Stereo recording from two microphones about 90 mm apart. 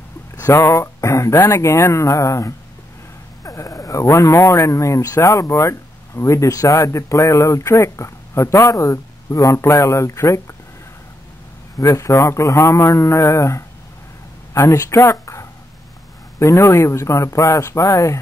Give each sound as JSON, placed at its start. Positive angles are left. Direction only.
{"t": 0.5, "sound": "speech", "side_deg": 35}
{"t": 11.8, "sound": "speech", "side_deg": 35}